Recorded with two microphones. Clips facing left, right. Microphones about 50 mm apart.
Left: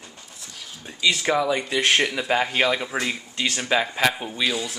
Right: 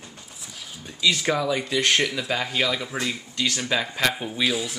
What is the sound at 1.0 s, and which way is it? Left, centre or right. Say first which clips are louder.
Speech: left 1 dB; centre.